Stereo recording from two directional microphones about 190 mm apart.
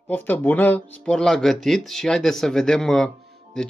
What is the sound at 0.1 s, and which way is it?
A man's voice, 10° left (ahead or behind).